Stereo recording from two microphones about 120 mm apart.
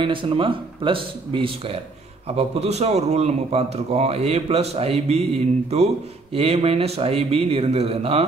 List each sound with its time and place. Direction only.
0.0 s a man's voice: 45° right (ahead or behind)